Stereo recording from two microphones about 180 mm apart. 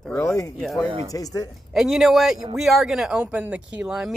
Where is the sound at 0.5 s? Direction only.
Centre (ahead or behind).